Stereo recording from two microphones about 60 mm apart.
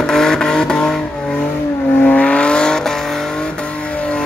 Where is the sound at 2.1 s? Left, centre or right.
Centre.